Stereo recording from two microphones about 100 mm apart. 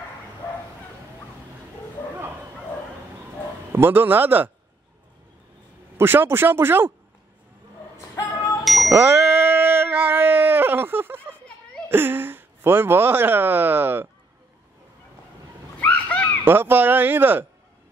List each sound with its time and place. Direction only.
3.7 s speech: 20° right (ahead or behind)
5.9 s speech: 20° right (ahead or behind)
8.6 s music: centre (ahead or behind)
8.9 s a sound: 20° right (ahead or behind)
11.9 s speech: 20° right (ahead or behind)
15.8 s a sound: 15° left (ahead or behind)
16.4 s speech: 20° right (ahead or behind)